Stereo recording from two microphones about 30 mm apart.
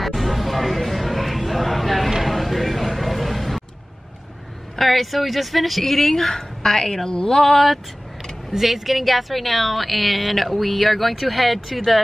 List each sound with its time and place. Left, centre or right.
0.0 s a sound: centre
4.7 s speech: centre
8.5 s speech: centre